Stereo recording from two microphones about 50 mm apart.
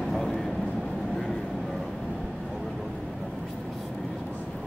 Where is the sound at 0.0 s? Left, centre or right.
Centre.